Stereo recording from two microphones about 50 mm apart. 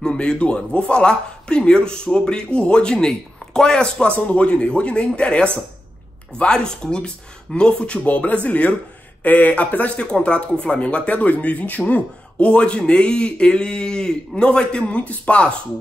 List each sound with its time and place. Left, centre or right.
0.0 s a man's voice: centre
6.3 s chopping: centre
7.5 s speech: centre